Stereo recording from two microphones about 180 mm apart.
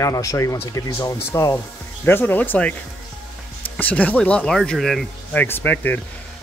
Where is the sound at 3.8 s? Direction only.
10° left (ahead or behind).